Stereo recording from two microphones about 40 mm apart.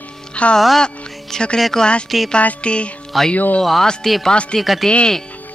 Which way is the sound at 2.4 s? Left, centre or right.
Left.